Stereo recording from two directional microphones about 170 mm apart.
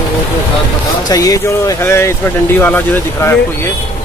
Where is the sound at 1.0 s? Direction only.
20° left (ahead or behind).